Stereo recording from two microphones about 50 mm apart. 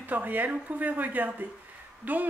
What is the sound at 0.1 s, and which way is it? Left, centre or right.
Speech, right.